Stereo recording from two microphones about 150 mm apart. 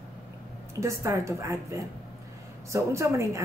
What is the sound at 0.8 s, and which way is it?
Speech, 20° right (ahead or behind).